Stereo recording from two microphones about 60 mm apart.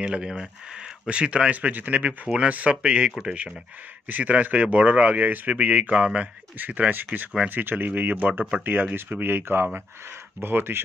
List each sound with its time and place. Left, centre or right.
0.0 s speech: centre; by 10.8 s right